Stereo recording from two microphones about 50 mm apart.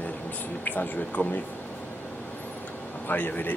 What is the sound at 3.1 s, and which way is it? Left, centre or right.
Speech, left.